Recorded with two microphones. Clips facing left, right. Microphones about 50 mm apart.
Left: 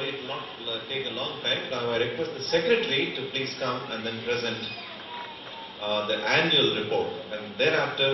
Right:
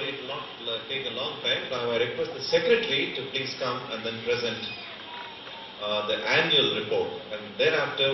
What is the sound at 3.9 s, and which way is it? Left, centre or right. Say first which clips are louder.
Speech: right 1 dB; left.